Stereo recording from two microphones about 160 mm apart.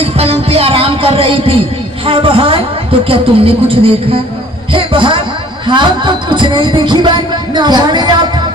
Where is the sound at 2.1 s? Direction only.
35° right (ahead or behind).